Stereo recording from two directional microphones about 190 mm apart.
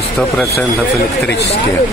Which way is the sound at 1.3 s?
60° left (ahead or behind).